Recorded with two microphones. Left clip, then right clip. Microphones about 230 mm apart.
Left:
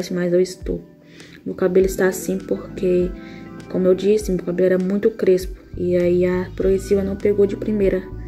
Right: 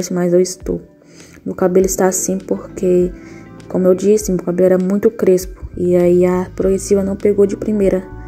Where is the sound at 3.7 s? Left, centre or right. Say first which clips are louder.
Right 4 dB; centre.